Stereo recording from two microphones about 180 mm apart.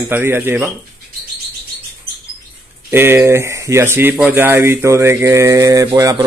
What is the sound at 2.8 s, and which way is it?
Speech, 10° right (ahead or behind).